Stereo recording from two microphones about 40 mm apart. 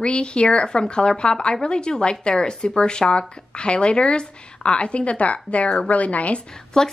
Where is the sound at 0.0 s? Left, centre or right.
Left.